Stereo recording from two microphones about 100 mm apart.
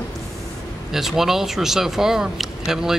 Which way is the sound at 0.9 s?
5° right (ahead or behind).